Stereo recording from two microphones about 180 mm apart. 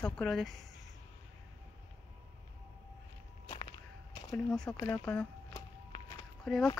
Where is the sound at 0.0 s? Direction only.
Centre (ahead or behind).